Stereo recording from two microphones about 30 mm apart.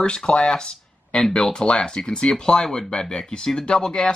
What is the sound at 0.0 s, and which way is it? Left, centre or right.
Speech, left.